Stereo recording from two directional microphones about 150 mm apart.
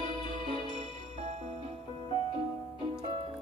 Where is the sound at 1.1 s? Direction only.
45° right (ahead or behind).